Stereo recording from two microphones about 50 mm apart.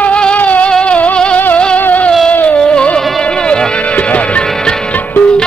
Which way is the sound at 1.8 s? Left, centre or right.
Left.